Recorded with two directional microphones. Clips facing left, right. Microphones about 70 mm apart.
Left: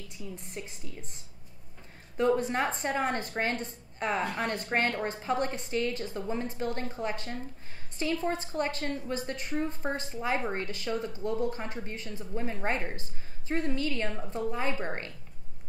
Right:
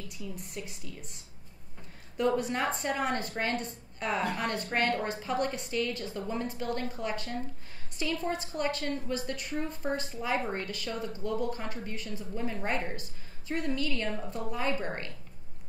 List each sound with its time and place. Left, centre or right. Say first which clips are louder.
0.4 s a woman's voice: even; left
2.1 s a woman's voice: left 2 dB; left